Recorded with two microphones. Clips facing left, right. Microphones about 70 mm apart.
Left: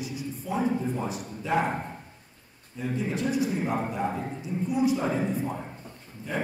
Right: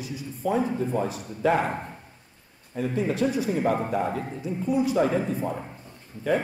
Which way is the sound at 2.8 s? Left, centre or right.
Right.